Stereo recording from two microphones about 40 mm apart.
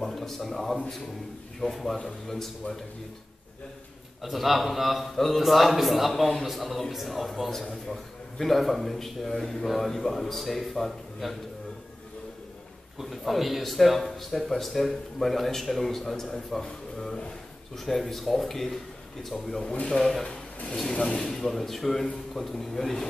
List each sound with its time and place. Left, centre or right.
0.0 s a sound: centre
0.4 s a man's voice: centre
4.2 s a man's voice: centre
13.0 s a man's voice: centre
17.7 s a man's voice: centre
19.7 s speech: left
20.0 s a man's voice: centre